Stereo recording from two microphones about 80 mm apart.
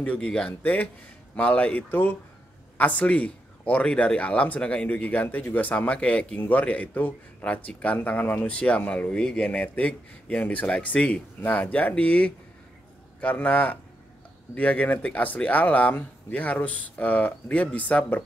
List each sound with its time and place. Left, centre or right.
0.0 s speech: centre